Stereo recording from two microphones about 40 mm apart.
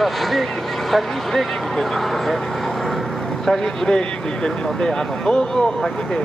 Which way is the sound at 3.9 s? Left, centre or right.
Left.